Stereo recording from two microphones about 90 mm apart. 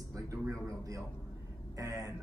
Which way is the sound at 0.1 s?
35° right (ahead or behind).